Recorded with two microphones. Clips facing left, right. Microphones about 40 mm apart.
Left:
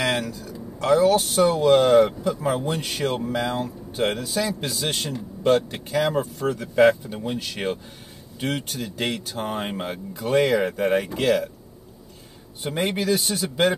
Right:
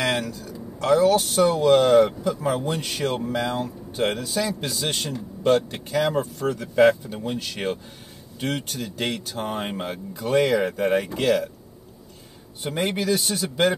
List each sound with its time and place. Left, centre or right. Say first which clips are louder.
0.0 s speech: even; centre
12.7 s speech: left 1 dB; centre